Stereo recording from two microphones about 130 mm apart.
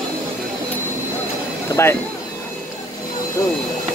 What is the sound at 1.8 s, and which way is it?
Speech, 20° left (ahead or behind).